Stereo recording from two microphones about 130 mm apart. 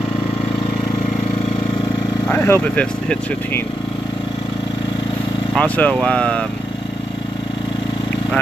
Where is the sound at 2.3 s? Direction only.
15° left (ahead or behind).